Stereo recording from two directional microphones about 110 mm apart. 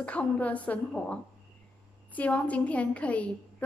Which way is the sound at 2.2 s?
10° left (ahead or behind).